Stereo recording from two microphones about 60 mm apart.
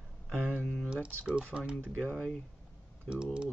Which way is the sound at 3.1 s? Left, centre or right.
Centre.